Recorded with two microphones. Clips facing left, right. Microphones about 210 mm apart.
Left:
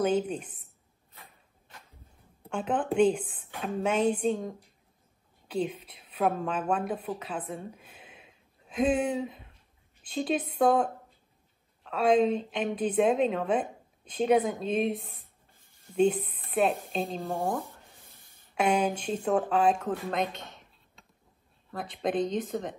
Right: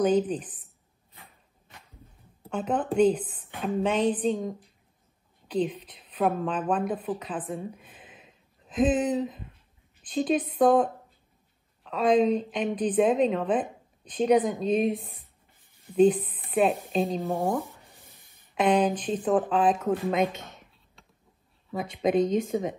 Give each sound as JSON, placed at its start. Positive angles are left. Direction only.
{"t": 0.0, "sound": "speech", "side_deg": 0}
{"t": 2.4, "sound": "a woman's voice", "side_deg": 0}
{"t": 7.5, "sound": "a sound", "side_deg": 0}
{"t": 9.1, "sound": "speech", "side_deg": 0}
{"t": 10.6, "sound": "a woman's voice", "side_deg": 5}
{"t": 15.7, "sound": "a sound", "side_deg": -15}
{"t": 16.4, "sound": "a sound", "side_deg": 0}
{"t": 16.9, "sound": "speech", "side_deg": 0}
{"t": 17.2, "sound": "speech", "side_deg": -15}
{"t": 18.6, "sound": "a woman's voice", "side_deg": 10}
{"t": 19.0, "sound": "speech", "side_deg": -5}
{"t": 22.2, "sound": "speech", "side_deg": -45}
{"t": 22.5, "sound": "speech", "side_deg": 0}